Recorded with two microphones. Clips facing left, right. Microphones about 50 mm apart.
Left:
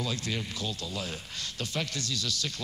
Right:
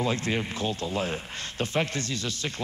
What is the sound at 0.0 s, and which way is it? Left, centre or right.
A man's voice, right.